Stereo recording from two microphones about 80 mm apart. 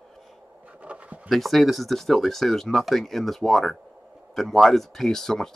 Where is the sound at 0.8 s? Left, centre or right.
Centre.